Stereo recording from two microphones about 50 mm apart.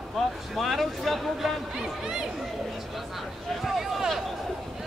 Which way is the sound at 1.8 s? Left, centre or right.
Centre.